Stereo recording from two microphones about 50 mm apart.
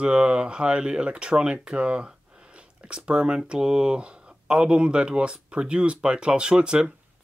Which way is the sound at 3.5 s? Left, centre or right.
Centre.